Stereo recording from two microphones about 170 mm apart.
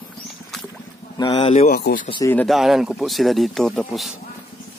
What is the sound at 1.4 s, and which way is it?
Speech, 40° left (ahead or behind).